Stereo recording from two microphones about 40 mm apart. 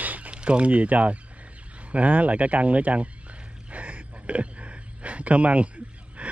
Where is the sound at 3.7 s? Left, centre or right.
Right.